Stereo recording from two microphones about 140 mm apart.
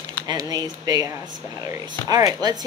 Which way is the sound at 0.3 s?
25° right (ahead or behind).